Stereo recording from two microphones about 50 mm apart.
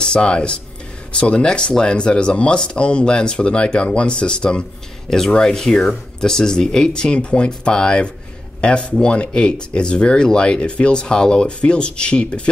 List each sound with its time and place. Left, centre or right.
0.0 s speech: centre